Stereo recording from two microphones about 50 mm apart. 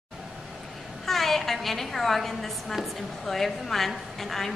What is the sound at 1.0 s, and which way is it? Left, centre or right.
A woman's voice, centre.